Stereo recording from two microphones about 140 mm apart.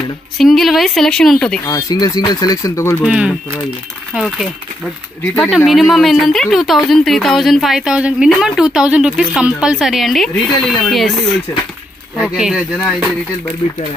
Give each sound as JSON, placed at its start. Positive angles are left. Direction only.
{"t": 0.4, "sound": "speech", "side_deg": 0}
{"t": 1.7, "sound": "speech", "side_deg": 25}
{"t": 3.0, "sound": "speech", "side_deg": -5}
{"t": 5.7, "sound": "speech", "side_deg": 0}
{"t": 12.2, "sound": "speech", "side_deg": -5}